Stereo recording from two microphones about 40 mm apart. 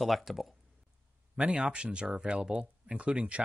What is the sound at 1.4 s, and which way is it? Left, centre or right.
Speech, right.